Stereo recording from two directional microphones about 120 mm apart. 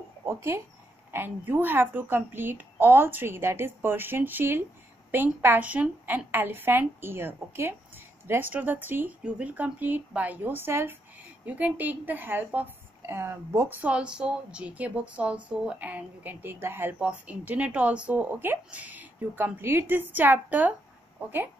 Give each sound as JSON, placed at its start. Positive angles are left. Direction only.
{"t": 0.3, "sound": "a woman's voice", "side_deg": -20}